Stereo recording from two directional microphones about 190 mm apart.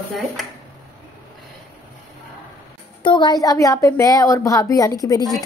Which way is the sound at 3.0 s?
25° left (ahead or behind).